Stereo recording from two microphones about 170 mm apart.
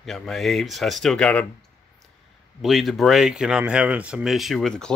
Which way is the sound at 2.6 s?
Centre (ahead or behind).